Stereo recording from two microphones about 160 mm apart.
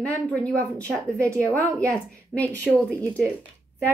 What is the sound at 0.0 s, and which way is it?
A woman's voice, 10° left (ahead or behind).